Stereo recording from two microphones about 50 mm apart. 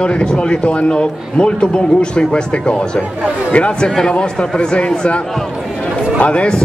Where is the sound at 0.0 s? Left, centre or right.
Centre.